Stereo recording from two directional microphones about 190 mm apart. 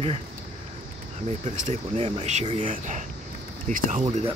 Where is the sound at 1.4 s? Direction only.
40° right (ahead or behind).